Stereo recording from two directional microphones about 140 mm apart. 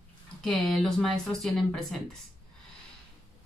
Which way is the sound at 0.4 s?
5° left (ahead or behind).